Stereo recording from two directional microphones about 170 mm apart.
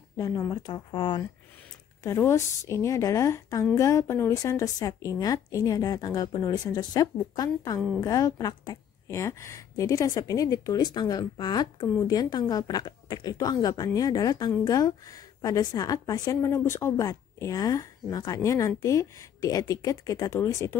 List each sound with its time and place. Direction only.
0.2 s a woman's voice: 20° left (ahead or behind)
2.0 s a woman's voice: 15° left (ahead or behind)